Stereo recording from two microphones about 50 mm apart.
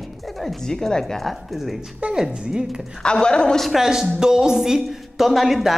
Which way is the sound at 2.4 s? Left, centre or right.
Centre.